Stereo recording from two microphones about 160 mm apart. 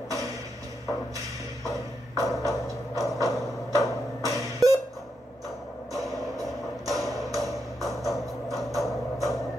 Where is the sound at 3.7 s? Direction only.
20° left (ahead or behind).